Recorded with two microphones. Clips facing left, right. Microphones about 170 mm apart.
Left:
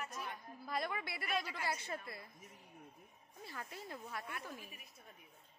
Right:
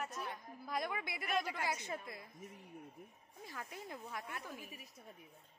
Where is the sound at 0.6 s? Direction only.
15° right (ahead or behind).